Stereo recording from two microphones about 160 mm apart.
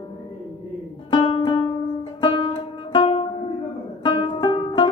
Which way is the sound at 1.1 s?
30° left (ahead or behind).